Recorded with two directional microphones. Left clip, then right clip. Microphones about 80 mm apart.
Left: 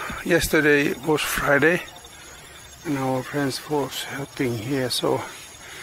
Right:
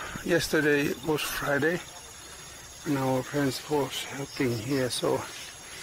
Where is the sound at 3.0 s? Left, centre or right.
Left.